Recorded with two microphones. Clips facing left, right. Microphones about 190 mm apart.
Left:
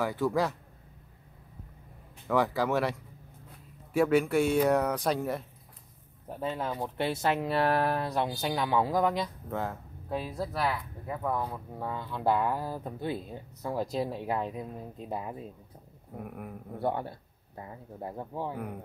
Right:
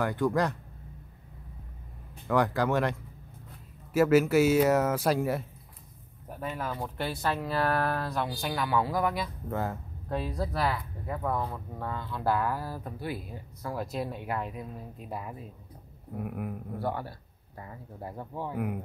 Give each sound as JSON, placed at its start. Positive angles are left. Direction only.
{"t": 0.0, "sound": "speech", "side_deg": 0}
{"t": 2.2, "sound": "speech", "side_deg": 0}
{"t": 6.2, "sound": "speech", "side_deg": 25}
{"t": 9.5, "sound": "speech", "side_deg": 0}
{"t": 16.3, "sound": "speech", "side_deg": -5}
{"t": 16.8, "sound": "speech", "side_deg": 25}
{"t": 18.5, "sound": "speech", "side_deg": -5}